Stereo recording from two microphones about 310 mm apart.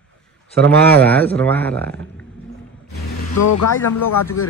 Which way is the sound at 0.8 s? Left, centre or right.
Centre.